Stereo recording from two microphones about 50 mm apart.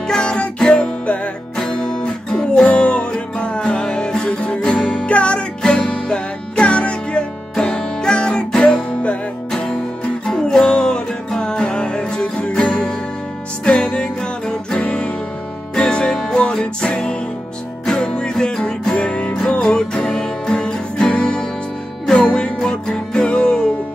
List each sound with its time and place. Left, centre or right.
0.1 s music: centre
1.6 s music: centre
10.2 s music: centre